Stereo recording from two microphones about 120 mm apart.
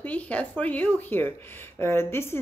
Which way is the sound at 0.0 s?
10° left (ahead or behind).